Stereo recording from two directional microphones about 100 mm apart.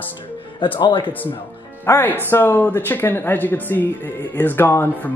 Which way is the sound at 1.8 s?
25° left (ahead or behind).